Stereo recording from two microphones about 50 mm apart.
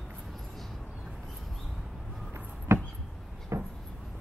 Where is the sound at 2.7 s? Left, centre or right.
Right.